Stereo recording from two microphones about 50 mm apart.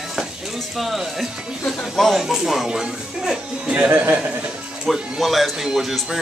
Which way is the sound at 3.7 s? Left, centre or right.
Right.